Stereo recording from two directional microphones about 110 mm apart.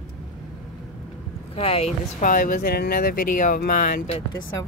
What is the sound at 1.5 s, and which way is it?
Speech, 65° left (ahead or behind).